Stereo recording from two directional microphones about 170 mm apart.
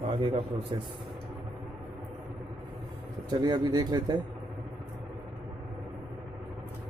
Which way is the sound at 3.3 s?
25° right (ahead or behind).